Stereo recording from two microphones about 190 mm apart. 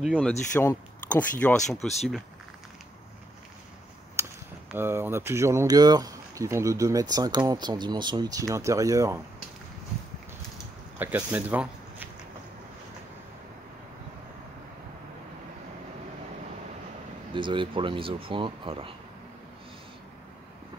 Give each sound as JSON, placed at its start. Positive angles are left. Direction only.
{"t": 0.0, "sound": "speech", "side_deg": 0}
{"t": 0.6, "sound": "speech", "side_deg": 10}
{"t": 4.2, "sound": "a sound", "side_deg": -15}
{"t": 4.6, "sound": "speech", "side_deg": -10}
{"t": 11.0, "sound": "speech", "side_deg": -10}
{"t": 17.3, "sound": "speech", "side_deg": -25}